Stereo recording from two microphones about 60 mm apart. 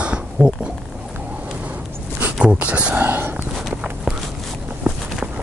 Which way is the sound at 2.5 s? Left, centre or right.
Right.